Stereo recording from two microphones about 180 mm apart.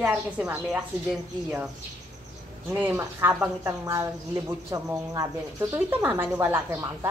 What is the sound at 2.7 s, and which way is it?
Speech, 10° right (ahead or behind).